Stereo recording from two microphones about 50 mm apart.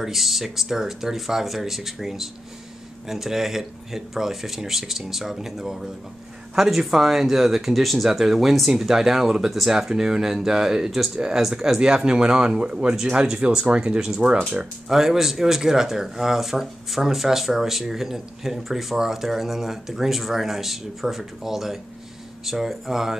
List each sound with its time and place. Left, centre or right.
0.0 s speech: centre; by 14.7 s right
14.9 s speech: centre